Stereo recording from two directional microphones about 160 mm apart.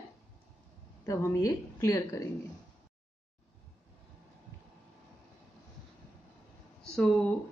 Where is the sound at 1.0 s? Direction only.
20° left (ahead or behind).